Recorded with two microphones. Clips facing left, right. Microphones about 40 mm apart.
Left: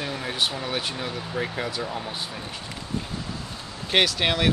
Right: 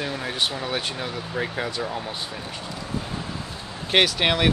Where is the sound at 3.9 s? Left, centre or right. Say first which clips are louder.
Right 2 dB; centre.